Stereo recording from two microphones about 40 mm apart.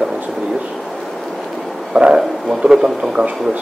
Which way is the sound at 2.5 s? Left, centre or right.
Centre.